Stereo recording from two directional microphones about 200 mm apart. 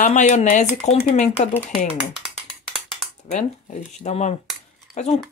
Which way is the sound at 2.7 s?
Centre (ahead or behind).